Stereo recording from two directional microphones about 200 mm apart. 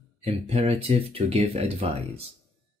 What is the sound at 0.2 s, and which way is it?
Speech, 30° right (ahead or behind).